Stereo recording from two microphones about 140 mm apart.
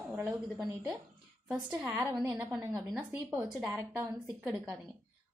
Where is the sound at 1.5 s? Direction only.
10° right (ahead or behind).